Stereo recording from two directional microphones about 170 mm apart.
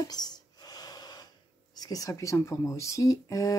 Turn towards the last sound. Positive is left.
turn(degrees=20)  # may be behind; listen again after turning